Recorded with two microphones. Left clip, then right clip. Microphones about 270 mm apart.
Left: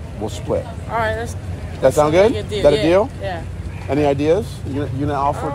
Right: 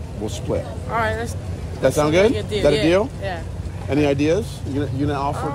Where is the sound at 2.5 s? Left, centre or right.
Centre.